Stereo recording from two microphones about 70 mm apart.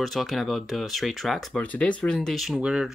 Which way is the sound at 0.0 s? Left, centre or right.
Centre.